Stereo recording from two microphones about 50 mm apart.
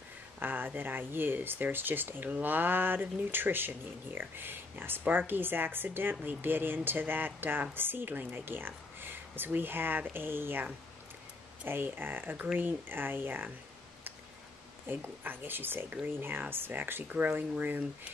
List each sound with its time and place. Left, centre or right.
0.4 s speech: right
14.9 s speech: right